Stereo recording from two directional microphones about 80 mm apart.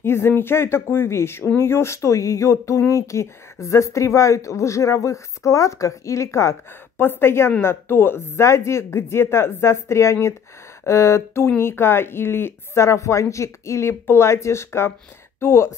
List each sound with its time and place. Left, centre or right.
0.0 s speech: left
7.0 s a woman's voice: left